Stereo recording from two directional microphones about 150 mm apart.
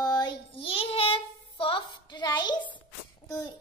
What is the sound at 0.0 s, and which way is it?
Child singing, 25° left (ahead or behind).